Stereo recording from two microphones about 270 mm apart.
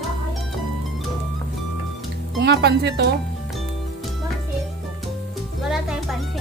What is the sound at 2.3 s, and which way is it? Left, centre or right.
Speech, right.